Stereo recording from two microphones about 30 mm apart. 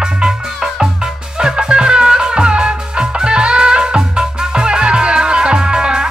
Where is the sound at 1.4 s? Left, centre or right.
Right.